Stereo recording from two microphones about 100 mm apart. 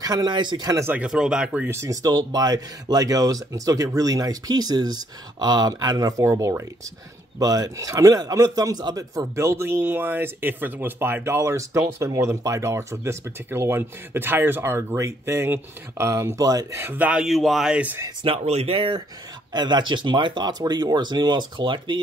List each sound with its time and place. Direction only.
0.0 s speech: 40° right (ahead or behind)
0.9 s speech: 5° right (ahead or behind)
1.7 s a man's voice: 30° right (ahead or behind)
2.0 s a man's voice: 40° right (ahead or behind)
16.8 s speech: 15° right (ahead or behind)
17.2 s speech: centre (ahead or behind)
18.2 s speech: 85° right; by 22.0 s 50° right (ahead or behind)